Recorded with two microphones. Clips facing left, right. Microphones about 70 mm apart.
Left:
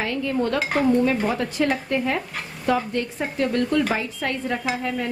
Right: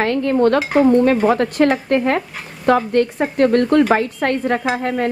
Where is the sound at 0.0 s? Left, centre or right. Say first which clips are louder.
Right 9 dB; right.